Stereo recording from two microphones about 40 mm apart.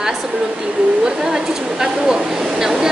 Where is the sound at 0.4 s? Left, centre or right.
Centre.